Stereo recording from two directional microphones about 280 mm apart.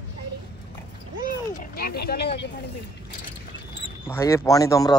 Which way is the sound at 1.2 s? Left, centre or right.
Left.